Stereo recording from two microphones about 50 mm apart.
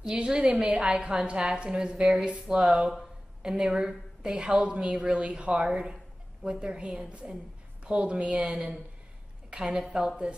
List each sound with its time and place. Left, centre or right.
0.1 s a woman's voice: right
9.5 s a woman's voice: centre